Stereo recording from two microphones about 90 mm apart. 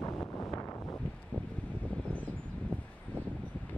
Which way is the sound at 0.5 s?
45° left (ahead or behind).